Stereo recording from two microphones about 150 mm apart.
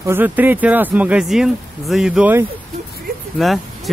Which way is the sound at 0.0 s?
15° right (ahead or behind).